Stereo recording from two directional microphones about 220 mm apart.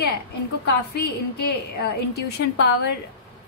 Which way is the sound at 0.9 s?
45° left (ahead or behind).